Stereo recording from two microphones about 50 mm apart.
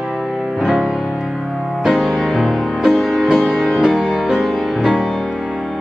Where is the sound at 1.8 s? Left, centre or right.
Centre.